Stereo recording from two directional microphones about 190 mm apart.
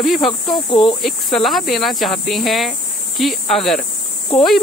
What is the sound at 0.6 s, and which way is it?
Speech, 25° left (ahead or behind).